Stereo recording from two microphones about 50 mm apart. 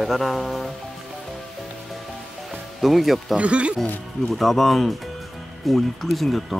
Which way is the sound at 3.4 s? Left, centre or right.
Right.